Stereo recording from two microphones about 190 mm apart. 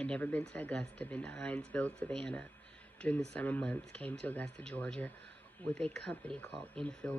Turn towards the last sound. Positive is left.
turn(degrees=5)  # may be behind; listen again after turning